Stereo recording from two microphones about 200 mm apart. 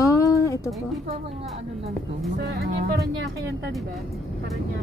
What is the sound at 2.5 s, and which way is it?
Speech, 55° right (ahead or behind).